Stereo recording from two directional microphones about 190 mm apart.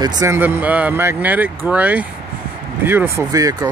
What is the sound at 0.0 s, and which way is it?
Speech, 20° right (ahead or behind).